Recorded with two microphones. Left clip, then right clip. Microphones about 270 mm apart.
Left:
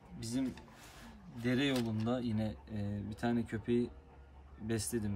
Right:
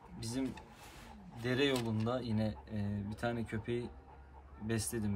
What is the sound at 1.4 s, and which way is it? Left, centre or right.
Speech, centre.